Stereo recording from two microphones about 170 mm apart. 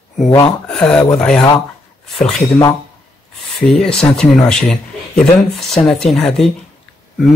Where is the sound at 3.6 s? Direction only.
5° left (ahead or behind).